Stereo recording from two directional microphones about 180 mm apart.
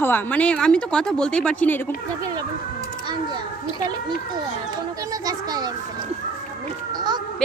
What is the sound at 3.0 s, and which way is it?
Speech, 25° right (ahead or behind).